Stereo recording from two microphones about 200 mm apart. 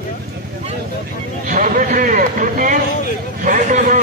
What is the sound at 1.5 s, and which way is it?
Speech, 40° right (ahead or behind).